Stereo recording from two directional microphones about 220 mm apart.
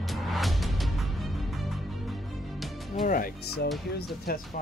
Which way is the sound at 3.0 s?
40° left (ahead or behind).